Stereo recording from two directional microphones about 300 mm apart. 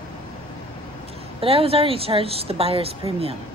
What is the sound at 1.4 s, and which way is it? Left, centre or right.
Speech, centre.